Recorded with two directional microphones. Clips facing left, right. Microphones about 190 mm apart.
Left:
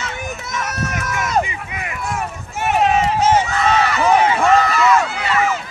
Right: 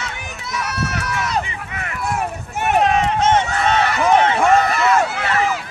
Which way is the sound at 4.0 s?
5° left (ahead or behind).